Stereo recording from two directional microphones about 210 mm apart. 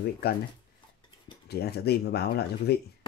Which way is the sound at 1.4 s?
50° left (ahead or behind).